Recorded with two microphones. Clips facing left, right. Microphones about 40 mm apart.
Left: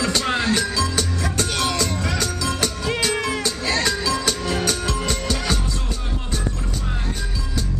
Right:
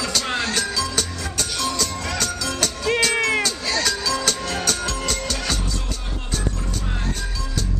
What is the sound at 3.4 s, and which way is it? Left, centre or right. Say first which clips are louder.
Music: even; left.